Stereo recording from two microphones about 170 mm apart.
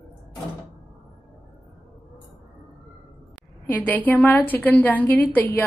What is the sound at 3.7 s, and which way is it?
A woman's voice, 10° left (ahead or behind).